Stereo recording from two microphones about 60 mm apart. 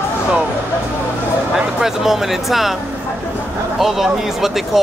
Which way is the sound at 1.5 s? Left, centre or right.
Centre.